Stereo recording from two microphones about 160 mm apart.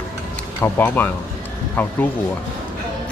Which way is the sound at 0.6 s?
10° left (ahead or behind).